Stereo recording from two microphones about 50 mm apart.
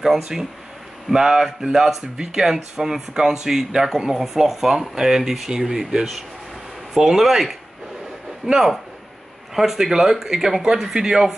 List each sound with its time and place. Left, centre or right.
0.0 s speech: centre